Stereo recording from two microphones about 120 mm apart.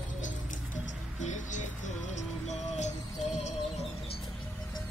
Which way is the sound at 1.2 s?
90° left.